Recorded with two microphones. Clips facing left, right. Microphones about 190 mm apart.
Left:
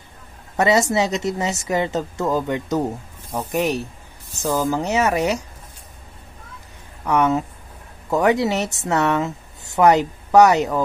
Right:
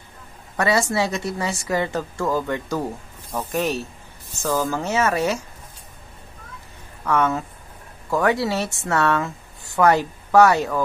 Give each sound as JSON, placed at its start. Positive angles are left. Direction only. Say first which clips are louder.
{"t": 0.6, "sound": "a woman's voice", "louder": "left 3 dB", "side_deg": 20}
{"t": 7.1, "sound": "speech", "louder": "left 3 dB", "side_deg": 20}